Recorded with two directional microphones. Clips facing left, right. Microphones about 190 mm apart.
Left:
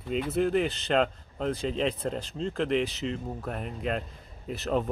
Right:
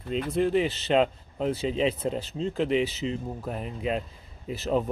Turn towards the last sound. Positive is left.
turn(degrees=0)  # may be behind; listen again after turning